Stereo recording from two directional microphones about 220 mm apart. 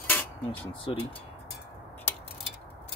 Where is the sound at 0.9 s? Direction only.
25° left (ahead or behind).